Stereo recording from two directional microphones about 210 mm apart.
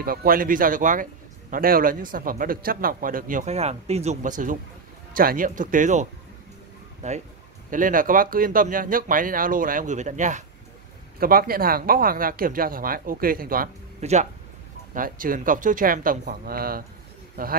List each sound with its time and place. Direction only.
0.0 s speech: 45° right (ahead or behind)